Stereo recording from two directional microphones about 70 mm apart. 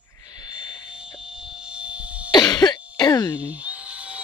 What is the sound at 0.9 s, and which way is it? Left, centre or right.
Cough, centre.